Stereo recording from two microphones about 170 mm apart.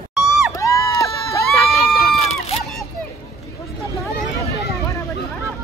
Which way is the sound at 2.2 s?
40° left (ahead or behind).